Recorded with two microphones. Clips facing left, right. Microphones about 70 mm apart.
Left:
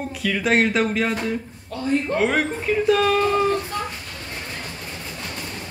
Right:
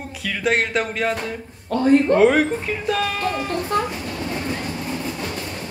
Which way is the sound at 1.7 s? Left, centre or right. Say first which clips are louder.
Right 7 dB; right.